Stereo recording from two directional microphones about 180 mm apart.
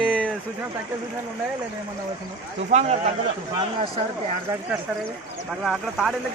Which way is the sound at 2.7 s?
40° right (ahead or behind).